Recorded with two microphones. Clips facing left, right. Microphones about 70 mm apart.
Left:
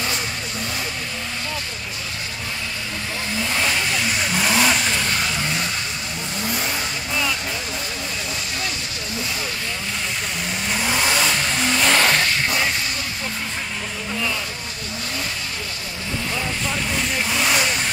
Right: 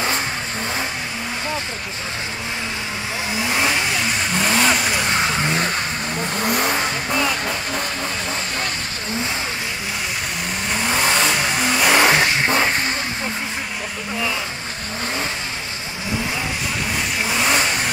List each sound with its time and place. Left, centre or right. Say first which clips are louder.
3.4 s vehicle: right 3 dB; centre
4.3 s vehicle: right 1 dB; centre
5.0 s vehicle: right 4 dB; right
6.3 s vehicle: right 5 dB; right
7.2 s music: right 1 dB; right
10.7 s vehicle: right 2 dB; centre
11.4 s music: right 2 dB; centre
12.4 s a sound: right 4 dB; right
17.2 s vehicle: right 2 dB; centre